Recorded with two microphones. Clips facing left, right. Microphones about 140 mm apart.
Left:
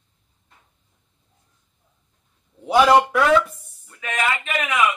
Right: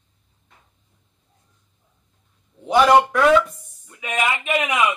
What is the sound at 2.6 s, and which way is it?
Speech, 5° left (ahead or behind).